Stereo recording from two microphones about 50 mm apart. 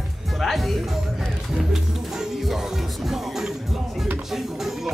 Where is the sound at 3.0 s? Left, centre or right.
Centre.